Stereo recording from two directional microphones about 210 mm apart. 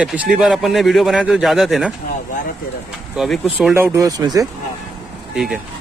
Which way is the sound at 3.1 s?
Centre (ahead or behind).